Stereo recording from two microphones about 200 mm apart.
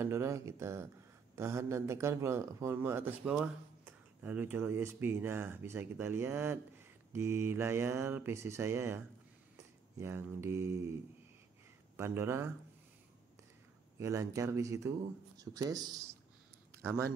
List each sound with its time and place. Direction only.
0.0 s speech: 15° right (ahead or behind)
12.0 s speech: 10° right (ahead or behind)
13.9 s speech: 15° right (ahead or behind)